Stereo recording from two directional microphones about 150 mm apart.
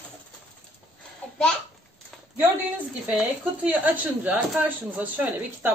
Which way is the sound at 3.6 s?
10° right (ahead or behind).